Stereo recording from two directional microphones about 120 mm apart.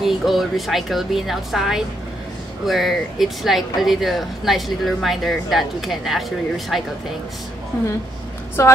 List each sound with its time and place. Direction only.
0.0 s speech: centre (ahead or behind)
8.6 s a woman's voice: 25° left (ahead or behind)